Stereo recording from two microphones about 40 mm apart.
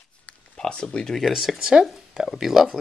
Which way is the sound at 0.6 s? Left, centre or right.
Left.